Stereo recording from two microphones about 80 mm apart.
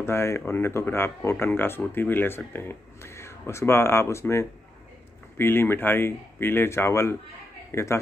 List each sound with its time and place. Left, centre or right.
0.0 s speech: left